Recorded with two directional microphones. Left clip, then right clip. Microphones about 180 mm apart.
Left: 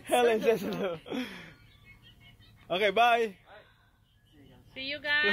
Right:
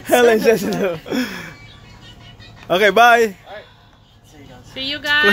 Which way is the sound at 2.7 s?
15° right (ahead or behind).